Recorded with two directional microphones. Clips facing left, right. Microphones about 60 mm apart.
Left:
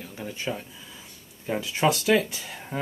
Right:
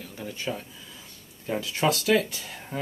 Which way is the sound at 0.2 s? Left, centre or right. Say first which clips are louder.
Left 1 dB; centre.